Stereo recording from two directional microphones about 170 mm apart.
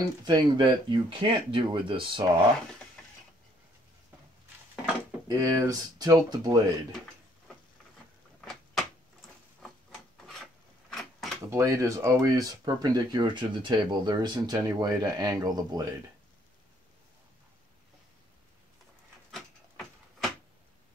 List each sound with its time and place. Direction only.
0.2 s speech: 25° right (ahead or behind)
5.3 s speech: 20° right (ahead or behind)
10.2 s filing: centre (ahead or behind)
11.5 s speech: 15° right (ahead or behind)
19.3 s a sound: centre (ahead or behind)